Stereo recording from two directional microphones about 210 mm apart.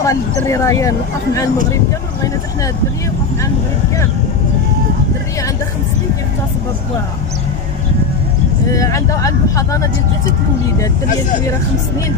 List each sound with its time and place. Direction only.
0.0 s speech: 15° left (ahead or behind)
8.7 s speech: 15° left (ahead or behind)